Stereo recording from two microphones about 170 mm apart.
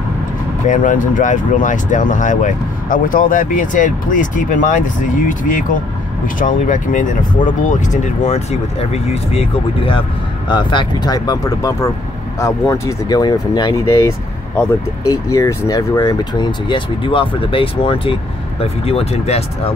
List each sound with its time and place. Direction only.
0.7 s speech: 50° left (ahead or behind)